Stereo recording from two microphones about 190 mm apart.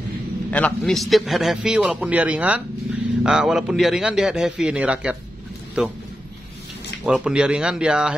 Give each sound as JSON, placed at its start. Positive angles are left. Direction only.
{"t": 0.5, "sound": "a man's voice", "side_deg": 5}
{"t": 7.1, "sound": "a man's voice", "side_deg": -5}